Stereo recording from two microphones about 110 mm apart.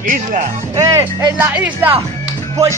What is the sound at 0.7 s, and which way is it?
Speech, 30° right (ahead or behind).